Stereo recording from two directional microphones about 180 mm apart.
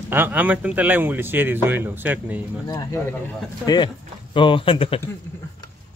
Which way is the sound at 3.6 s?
25° left (ahead or behind).